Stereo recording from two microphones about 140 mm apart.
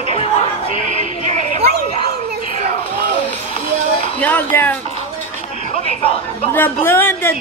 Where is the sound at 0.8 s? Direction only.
60° right (ahead or behind).